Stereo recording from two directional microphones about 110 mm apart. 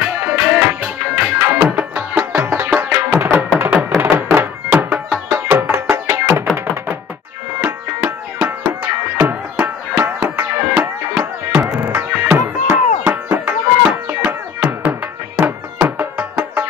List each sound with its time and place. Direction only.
0.0 s music: 15° right (ahead or behind)
0.7 s tabla: 10° right (ahead or behind)
1.2 s music: 20° right (ahead or behind)